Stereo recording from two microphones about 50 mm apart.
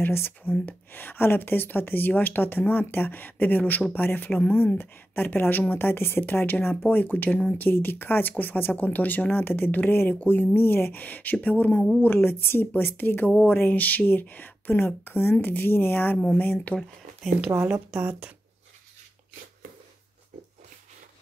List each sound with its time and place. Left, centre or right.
0.0 s a woman's voice: left
17.5 s speech: right
17.9 s speech: right